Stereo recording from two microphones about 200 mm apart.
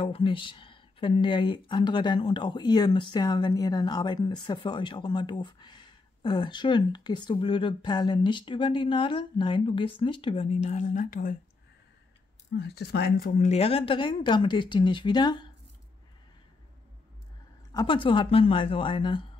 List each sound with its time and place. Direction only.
0.0 s speech: 25° left (ahead or behind); by 11.3 s 40° left (ahead or behind)
12.5 s speech: 55° left (ahead or behind); by 15.4 s 20° left (ahead or behind)
17.7 s speech: 25° left (ahead or behind)